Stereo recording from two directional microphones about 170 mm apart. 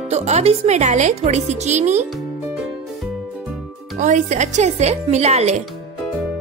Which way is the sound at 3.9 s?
45° right (ahead or behind).